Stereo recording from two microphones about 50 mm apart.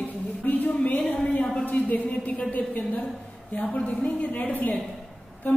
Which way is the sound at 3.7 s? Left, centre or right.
Left.